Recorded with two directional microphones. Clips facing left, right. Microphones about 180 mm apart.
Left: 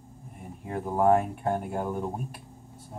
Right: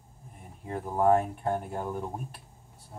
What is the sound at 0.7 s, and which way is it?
Speech, 10° left (ahead or behind).